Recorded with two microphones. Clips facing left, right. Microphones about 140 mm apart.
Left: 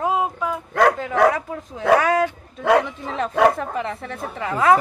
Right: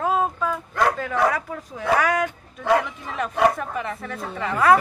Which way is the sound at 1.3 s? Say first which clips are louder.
Left 1 dB; 25° left (ahead or behind).